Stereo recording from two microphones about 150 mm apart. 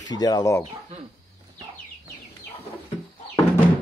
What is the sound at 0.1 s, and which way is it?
Speech, 25° left (ahead or behind).